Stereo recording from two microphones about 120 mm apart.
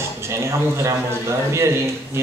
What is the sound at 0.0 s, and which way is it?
A man's voice, 20° right (ahead or behind).